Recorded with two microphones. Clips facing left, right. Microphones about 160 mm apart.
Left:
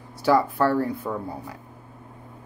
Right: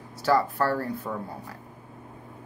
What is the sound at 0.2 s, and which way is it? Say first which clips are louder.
Speech: left 3 dB; 15° left (ahead or behind).